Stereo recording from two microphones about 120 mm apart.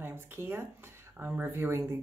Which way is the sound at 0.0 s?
20° right (ahead or behind).